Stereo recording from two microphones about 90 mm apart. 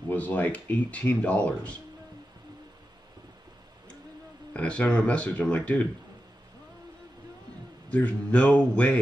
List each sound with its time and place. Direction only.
0.1 s speech: 20° left (ahead or behind)
4.6 s speech: 15° left (ahead or behind)
7.9 s speech: 15° left (ahead or behind)